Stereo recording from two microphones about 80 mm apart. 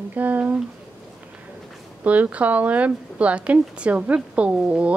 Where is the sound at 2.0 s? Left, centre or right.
Centre.